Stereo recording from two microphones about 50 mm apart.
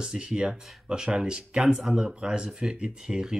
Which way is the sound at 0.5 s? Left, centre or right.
Centre.